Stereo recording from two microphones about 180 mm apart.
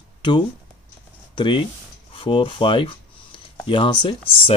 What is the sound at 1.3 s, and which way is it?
Speech, 25° left (ahead or behind).